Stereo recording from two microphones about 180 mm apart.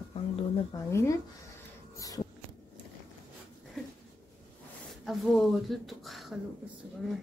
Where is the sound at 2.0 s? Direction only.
20° left (ahead or behind).